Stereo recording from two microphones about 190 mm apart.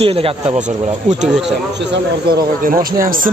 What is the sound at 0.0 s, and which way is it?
Speech, 30° right (ahead or behind).